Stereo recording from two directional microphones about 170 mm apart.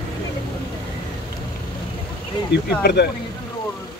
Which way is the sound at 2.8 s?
75° left (ahead or behind).